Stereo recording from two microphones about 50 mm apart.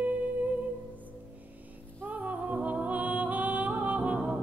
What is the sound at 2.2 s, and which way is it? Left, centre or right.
Music, right.